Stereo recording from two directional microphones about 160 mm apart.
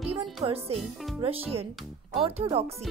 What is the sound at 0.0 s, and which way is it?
Music, 40° right (ahead or behind).